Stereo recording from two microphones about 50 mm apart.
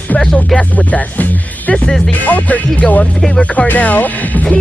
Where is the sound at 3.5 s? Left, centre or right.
Left.